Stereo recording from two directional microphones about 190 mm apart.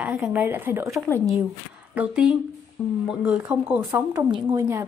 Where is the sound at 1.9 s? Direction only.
5° right (ahead or behind).